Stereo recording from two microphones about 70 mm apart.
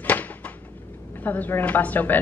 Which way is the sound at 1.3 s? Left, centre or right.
Left.